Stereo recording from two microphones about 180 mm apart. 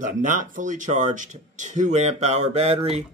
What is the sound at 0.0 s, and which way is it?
Speech, 45° right (ahead or behind).